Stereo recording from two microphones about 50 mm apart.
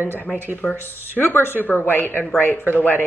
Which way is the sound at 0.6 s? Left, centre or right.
Centre.